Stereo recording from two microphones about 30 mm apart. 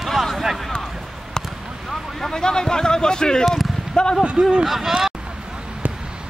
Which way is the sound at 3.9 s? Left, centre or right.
Left.